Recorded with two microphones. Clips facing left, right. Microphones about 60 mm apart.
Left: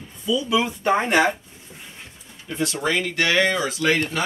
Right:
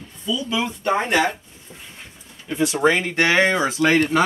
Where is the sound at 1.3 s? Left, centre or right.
Centre.